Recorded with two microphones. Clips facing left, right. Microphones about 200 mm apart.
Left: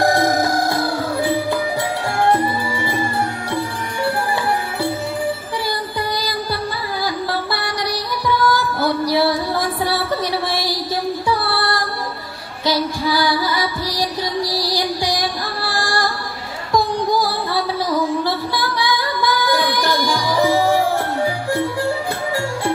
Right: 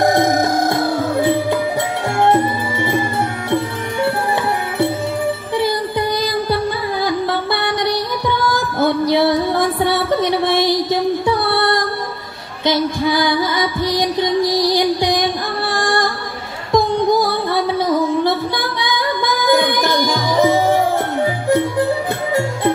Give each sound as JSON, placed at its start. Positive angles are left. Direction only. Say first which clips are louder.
{"t": 0.0, "sound": "music", "louder": "right 2 dB", "side_deg": -20}
{"t": 3.4, "sound": "music", "louder": "right 4 dB", "side_deg": -20}
{"t": 5.6, "sound": "music", "louder": "right 6 dB", "side_deg": -20}